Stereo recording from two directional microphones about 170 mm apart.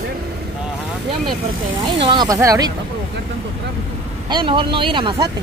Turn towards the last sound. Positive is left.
turn(degrees=-25)  # may be behind; listen again after turning